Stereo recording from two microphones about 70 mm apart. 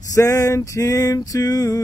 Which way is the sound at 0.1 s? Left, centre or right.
Left.